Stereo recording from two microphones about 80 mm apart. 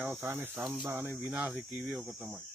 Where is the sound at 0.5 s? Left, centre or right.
Centre.